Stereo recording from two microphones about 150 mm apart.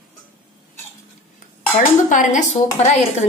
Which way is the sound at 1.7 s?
60° left (ahead or behind).